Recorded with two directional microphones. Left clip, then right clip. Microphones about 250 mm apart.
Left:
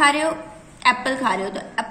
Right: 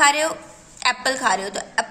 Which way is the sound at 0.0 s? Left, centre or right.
Right.